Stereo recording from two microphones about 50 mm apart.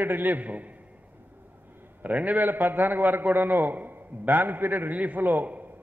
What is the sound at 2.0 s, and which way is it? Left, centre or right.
A man's voice, right.